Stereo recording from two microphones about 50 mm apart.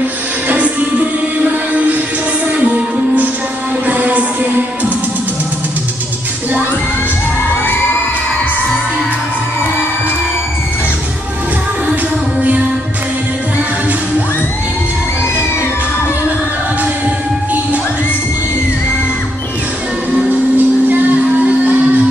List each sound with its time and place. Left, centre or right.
0.5 s music: right
20.5 s music: right